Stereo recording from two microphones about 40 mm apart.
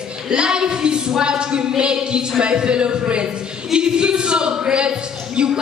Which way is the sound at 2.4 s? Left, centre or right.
Right.